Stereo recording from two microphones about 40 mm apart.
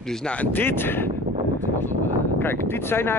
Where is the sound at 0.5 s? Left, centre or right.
Left.